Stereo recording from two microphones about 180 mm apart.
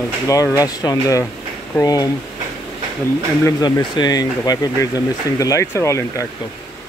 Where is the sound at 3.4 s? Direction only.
20° left (ahead or behind).